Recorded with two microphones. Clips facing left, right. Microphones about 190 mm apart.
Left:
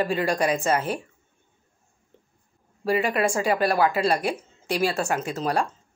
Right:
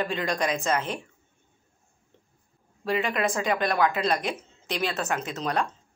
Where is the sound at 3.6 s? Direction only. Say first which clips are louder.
Left 2 dB; 35° left (ahead or behind).